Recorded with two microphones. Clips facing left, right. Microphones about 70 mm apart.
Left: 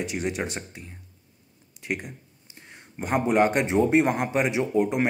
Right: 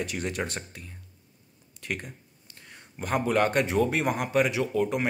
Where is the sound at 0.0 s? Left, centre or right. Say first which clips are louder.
Left 3 dB; centre.